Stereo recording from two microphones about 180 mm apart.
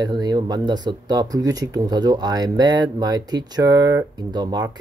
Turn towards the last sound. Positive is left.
turn(degrees=-25)  # may be behind; listen again after turning